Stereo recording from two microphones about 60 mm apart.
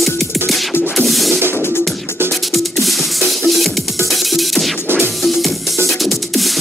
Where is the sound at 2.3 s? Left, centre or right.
Centre.